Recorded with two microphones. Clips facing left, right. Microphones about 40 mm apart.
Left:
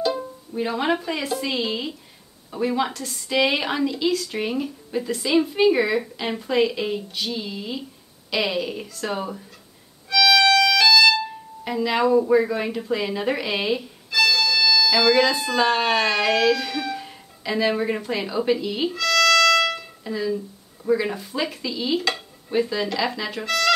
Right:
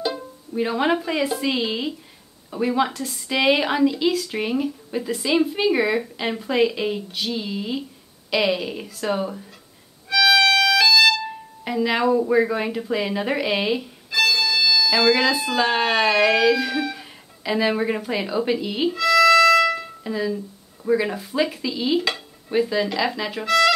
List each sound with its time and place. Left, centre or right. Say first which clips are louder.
0.6 s stir: right 2 dB; centre
2.5 s a woman's voice: right 2 dB; centre
7.3 s stir: right 3 dB; centre
10.0 s music: even; centre
11.8 s stir: left 1 dB; centre
14.3 s speech: even; centre
18.9 s music: right 4 dB; centre
20.0 s speech: right 1 dB; centre
20.8 s stir: right 1 dB; centre